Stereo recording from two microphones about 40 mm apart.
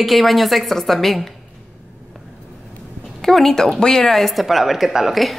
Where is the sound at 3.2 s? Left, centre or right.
Centre.